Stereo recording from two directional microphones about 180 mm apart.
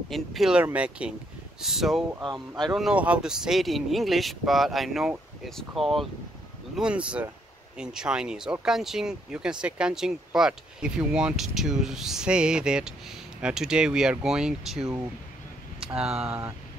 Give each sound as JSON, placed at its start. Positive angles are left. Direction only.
{"t": 0.1, "sound": "speech", "side_deg": 0}
{"t": 2.1, "sound": "speech", "side_deg": -25}
{"t": 2.6, "sound": "speech", "side_deg": 0}
{"t": 15.9, "sound": "speech", "side_deg": -5}